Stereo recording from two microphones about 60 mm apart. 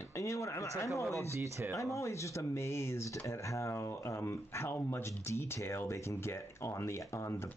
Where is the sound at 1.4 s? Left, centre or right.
Right.